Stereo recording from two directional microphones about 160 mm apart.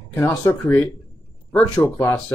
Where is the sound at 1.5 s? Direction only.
10° left (ahead or behind).